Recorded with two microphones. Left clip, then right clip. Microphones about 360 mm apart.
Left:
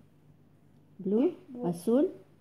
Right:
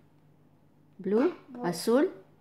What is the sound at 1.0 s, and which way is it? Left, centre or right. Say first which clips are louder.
Speech: right 2 dB; right.